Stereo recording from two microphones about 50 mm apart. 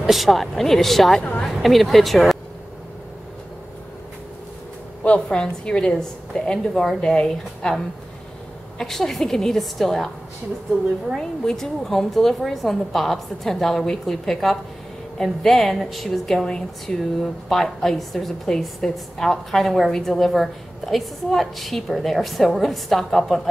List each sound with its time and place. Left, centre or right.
0.0 s a woman's voice: centre
5.0 s a woman's voice: left
8.7 s a woman's voice: centre
11.1 s a woman's voice: centre